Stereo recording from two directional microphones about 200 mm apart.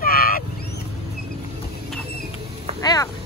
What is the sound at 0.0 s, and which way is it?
Vehicle, 45° left (ahead or behind).